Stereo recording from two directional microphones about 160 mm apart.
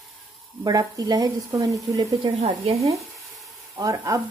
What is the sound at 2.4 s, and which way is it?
Speech, 40° right (ahead or behind).